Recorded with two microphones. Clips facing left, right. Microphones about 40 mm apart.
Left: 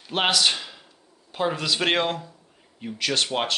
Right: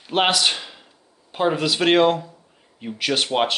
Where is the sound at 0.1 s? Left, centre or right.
Centre.